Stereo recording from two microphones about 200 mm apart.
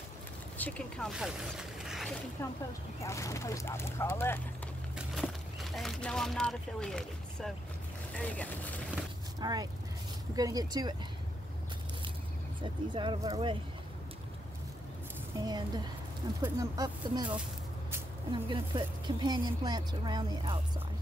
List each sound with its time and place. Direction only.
0.6 s speech: 5° left (ahead or behind)
2.4 s speech: 10° left (ahead or behind)
4.9 s speech: centre (ahead or behind)
9.4 s speech: 20° right (ahead or behind)
12.9 s speech: 25° right (ahead or behind)
15.4 s speech: 20° right (ahead or behind)